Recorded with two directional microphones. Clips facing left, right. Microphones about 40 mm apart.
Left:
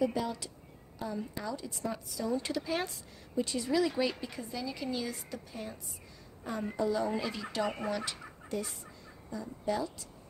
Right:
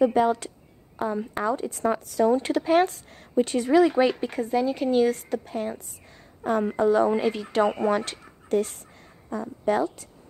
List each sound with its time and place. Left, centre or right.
0.0 s a woman's voice: right
6.8 s speech: right
8.0 s speech: right